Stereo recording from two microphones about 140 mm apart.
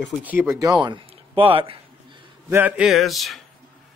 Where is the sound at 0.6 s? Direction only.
30° right (ahead or behind).